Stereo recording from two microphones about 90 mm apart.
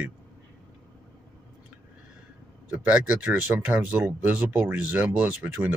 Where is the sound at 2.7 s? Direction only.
15° right (ahead or behind).